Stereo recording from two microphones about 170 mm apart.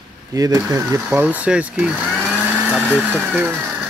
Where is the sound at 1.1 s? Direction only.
10° right (ahead or behind).